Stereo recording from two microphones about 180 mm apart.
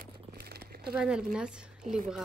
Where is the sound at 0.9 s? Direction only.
5° right (ahead or behind).